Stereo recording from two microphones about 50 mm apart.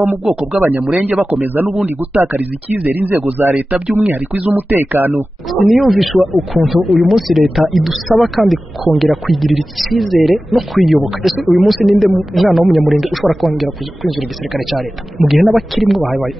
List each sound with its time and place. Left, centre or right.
0.6 s speech: right
1.0 s a man's voice: right
4.0 s speech: right
4.7 s speech: right
5.5 s speech: centre